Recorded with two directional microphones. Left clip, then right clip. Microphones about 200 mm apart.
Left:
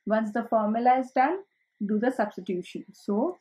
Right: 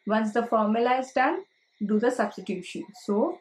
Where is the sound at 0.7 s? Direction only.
35° left (ahead or behind).